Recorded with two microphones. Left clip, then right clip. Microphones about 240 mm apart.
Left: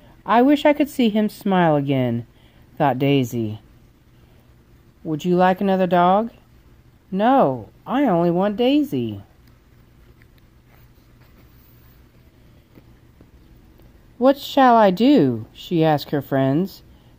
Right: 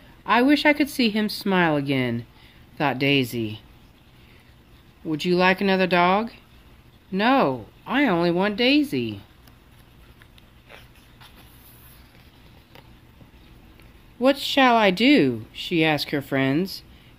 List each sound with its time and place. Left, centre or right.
0.2 s speech: left
5.1 s speech: left
14.2 s speech: left